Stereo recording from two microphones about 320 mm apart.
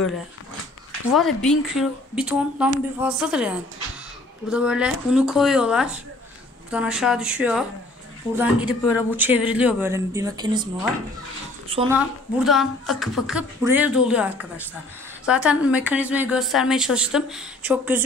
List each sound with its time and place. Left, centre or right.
1.1 s a woman's voice: centre
12.4 s a woman's voice: centre